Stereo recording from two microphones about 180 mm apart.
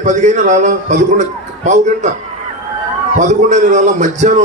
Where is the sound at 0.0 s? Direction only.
40° right (ahead or behind).